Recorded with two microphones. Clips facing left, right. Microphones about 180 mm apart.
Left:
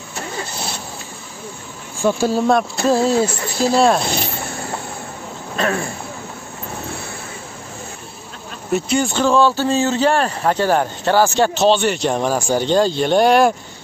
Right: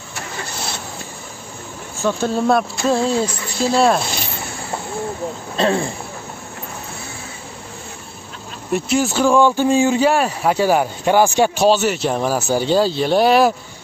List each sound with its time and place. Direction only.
2.0 s speech: 10° left (ahead or behind)
5.6 s a sound: 25° right (ahead or behind)
8.7 s speech: centre (ahead or behind)